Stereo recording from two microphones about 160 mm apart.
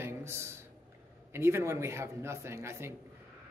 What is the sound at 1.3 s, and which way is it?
A man's voice, 15° right (ahead or behind).